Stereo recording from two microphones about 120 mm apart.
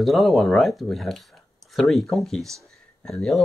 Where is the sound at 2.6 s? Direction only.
5° left (ahead or behind).